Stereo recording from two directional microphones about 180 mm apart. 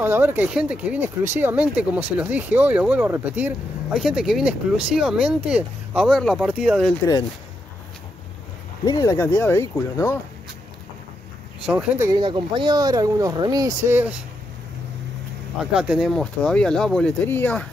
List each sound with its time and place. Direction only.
0.0 s speech: 10° right (ahead or behind)
8.8 s speech: 20° left (ahead or behind)
11.6 s speech: 5° right (ahead or behind)
12.1 s speech: 25° right (ahead or behind)
15.6 s speech: 5° right (ahead or behind)